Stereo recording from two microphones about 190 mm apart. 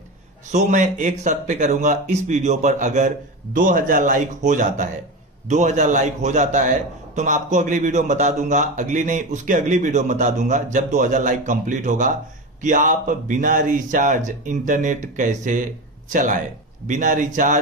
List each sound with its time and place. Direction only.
0.5 s speech: 40° right (ahead or behind)